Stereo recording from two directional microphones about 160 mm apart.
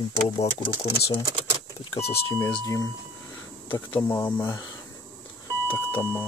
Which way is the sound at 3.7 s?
15° left (ahead or behind).